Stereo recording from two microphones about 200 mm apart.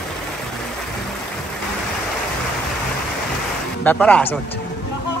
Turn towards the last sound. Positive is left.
turn(degrees=5)  # may be behind; listen again after turning